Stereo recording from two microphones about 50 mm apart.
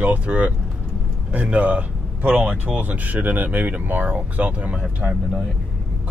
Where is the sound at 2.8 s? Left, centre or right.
Right.